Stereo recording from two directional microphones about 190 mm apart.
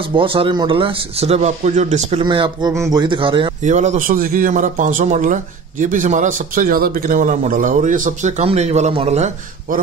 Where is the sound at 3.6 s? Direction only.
40° right (ahead or behind).